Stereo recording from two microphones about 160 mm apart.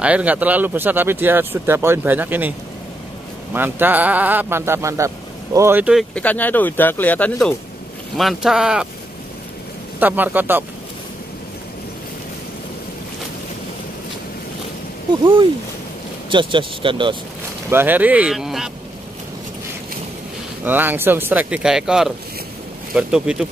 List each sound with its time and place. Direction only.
0.0 s a man's voice: 10° right (ahead or behind)
3.5 s a man's voice: 15° right (ahead or behind)
6.1 s speech: 10° left (ahead or behind)
9.9 s a man's voice: 10° right (ahead or behind)
16.3 s speech: 30° right (ahead or behind)
17.6 s a man's voice: 15° right (ahead or behind)
20.6 s a man's voice: 10° right (ahead or behind)